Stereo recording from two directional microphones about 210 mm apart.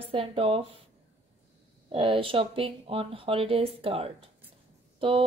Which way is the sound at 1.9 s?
25° right (ahead or behind).